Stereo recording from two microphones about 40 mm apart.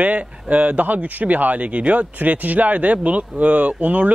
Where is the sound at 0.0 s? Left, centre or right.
Right.